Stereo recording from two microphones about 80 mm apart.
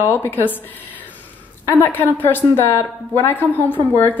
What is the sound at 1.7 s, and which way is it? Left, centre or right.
A woman's voice, left.